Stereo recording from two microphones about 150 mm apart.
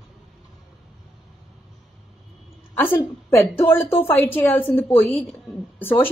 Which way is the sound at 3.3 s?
15° left (ahead or behind).